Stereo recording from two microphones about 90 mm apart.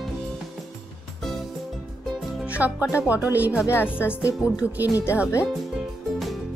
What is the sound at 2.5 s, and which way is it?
Speech, 15° right (ahead or behind).